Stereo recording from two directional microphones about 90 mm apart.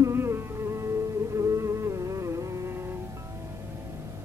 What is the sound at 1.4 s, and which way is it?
Music, 35° right (ahead or behind).